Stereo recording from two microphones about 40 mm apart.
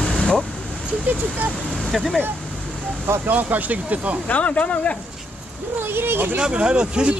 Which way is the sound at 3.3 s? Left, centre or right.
Right.